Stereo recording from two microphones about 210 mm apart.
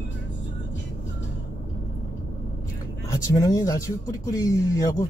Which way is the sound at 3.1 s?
15° left (ahead or behind).